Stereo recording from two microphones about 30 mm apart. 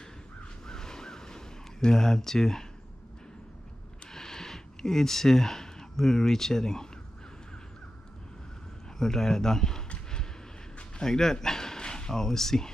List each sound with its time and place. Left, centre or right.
0.7 s a sound: left
4.1 s speech: centre
8.9 s speech: centre
11.0 s speech: centre
11.4 s dog: centre